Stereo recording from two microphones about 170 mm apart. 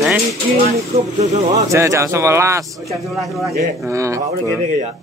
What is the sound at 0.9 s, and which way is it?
Speech, 40° right (ahead or behind).